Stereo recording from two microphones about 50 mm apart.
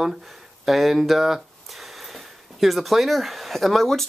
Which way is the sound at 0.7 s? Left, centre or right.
Centre.